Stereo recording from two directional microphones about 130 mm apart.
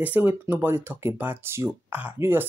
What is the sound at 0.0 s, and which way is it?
Speech, 15° right (ahead or behind).